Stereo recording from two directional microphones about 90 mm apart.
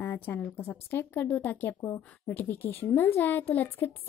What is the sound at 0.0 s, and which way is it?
Speech, 20° left (ahead or behind).